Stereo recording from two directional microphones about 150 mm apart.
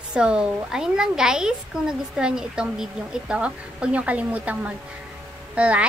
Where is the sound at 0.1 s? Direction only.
5° right (ahead or behind).